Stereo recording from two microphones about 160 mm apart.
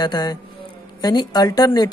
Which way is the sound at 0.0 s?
25° left (ahead or behind).